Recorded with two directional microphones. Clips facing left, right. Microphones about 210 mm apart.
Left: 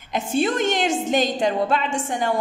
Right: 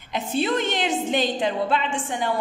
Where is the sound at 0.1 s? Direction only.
45° left (ahead or behind).